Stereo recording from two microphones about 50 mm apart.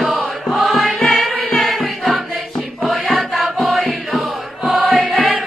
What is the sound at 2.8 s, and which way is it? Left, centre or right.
Music, centre.